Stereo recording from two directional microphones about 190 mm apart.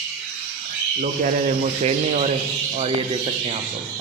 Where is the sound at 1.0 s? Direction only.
40° right (ahead or behind).